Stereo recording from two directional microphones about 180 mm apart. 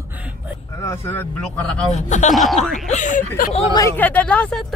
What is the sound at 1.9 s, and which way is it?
Speech, 40° left (ahead or behind).